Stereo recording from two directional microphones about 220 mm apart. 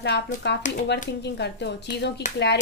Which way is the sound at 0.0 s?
50° left (ahead or behind).